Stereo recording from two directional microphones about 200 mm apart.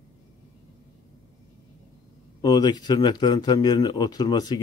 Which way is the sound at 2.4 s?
20° left (ahead or behind).